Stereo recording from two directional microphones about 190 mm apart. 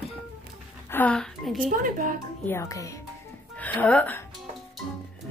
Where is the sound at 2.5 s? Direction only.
15° left (ahead or behind).